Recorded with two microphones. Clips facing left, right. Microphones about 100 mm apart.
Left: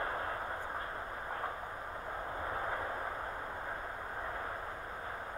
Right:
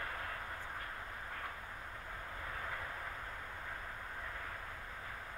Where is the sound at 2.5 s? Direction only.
30° left (ahead or behind).